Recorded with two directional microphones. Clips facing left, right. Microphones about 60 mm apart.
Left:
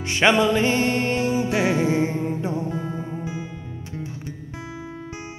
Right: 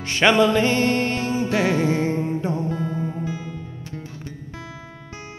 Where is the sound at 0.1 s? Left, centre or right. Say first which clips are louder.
Right 1 dB; left.